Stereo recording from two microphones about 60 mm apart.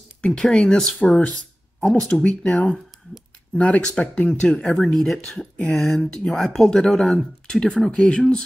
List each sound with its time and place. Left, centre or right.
0.2 s speech: centre